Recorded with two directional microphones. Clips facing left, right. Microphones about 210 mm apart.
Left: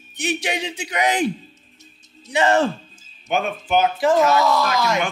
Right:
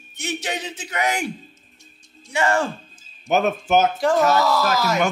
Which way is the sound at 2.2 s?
20° left (ahead or behind).